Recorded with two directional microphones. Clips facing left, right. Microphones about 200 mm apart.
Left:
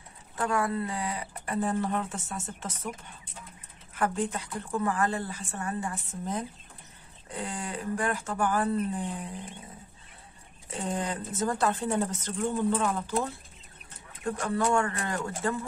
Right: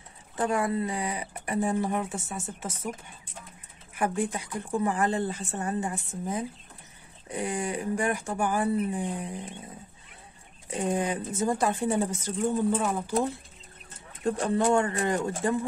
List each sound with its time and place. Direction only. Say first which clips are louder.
0.4 s speech: right 2 dB; 20° right (ahead or behind)
3.9 s a woman's voice: right 1 dB; 10° right (ahead or behind)
10.7 s a woman's voice: right 4 dB; 15° right (ahead or behind)